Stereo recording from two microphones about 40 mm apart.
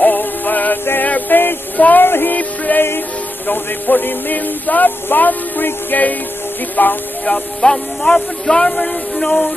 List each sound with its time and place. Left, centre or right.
0.0 s music: left
1.8 s a sound: left
2.0 s music: left
2.3 s music: left
3.4 s speech: left
7.2 s speech: centre